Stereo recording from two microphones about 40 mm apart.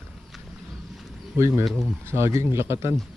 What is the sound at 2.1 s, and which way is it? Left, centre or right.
Speech, right.